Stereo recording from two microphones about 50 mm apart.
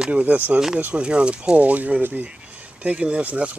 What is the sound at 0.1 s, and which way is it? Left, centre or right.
Speech, right.